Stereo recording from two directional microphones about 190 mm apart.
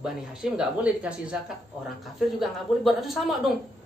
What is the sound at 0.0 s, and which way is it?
A man's voice, 5° right (ahead or behind).